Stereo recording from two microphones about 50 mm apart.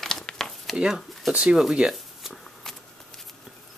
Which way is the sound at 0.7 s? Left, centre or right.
Centre.